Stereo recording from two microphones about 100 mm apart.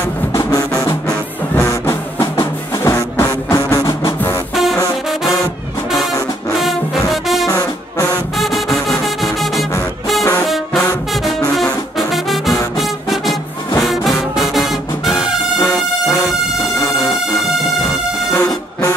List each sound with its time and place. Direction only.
0.3 s music: 30° left (ahead or behind)
6.6 s music: centre (ahead or behind)
7.4 s brass instrument: 35° left (ahead or behind)
8.4 s music: centre (ahead or behind)
12.1 s music: centre (ahead or behind)
15.1 s music: 20° left (ahead or behind)
18.3 s music: 25° left (ahead or behind)